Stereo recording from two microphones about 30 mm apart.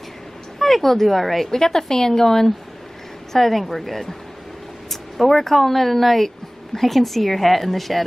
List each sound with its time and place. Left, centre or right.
0.6 s a woman's voice: centre